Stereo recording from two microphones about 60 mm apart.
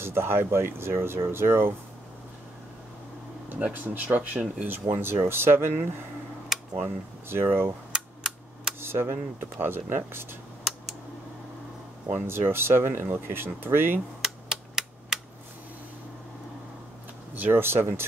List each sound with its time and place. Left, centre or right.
0.0 s speech: right
3.4 s speech: right
4.9 s speech: right
7.2 s speech: right
7.9 s a sound: centre
8.8 s speech: right
12.3 s speech: right
14.2 s a sound: centre
17.3 s speech: right